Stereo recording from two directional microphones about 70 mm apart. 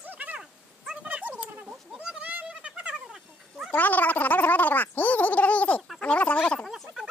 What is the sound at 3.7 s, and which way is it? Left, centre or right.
Gargling, left.